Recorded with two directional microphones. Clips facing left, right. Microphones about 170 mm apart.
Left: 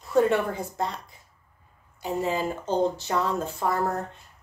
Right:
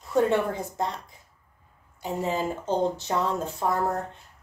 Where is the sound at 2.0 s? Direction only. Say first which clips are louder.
Left 1 dB; 20° right (ahead or behind).